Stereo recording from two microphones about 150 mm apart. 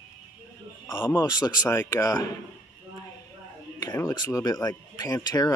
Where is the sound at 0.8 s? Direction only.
15° left (ahead or behind).